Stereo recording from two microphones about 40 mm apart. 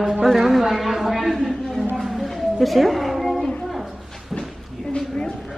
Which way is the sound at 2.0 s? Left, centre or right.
Centre.